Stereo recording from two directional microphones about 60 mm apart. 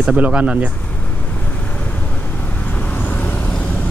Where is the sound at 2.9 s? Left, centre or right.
Left.